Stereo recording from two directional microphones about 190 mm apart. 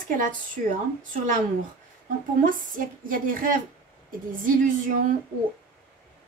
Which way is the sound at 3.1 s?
45° right (ahead or behind).